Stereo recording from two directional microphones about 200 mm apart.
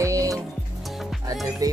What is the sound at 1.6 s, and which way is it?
Music, 20° right (ahead or behind).